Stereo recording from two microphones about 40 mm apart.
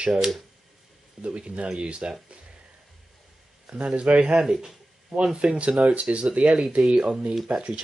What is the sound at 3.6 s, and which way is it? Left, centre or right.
Speech, right.